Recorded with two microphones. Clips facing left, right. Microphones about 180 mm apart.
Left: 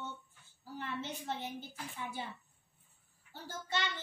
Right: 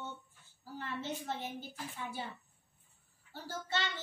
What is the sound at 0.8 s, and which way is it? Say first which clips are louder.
Child singing: right 1 dB; 20° left (ahead or behind).